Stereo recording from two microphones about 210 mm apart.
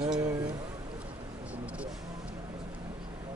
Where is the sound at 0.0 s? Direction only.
20° right (ahead or behind).